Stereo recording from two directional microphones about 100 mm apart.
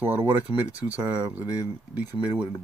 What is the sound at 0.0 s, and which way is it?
Speech, 20° right (ahead or behind).